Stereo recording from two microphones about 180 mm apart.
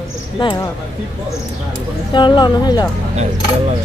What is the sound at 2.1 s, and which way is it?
Speech, 25° left (ahead or behind).